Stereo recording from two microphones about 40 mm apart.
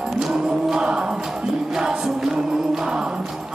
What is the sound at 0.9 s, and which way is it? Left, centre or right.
Music, right.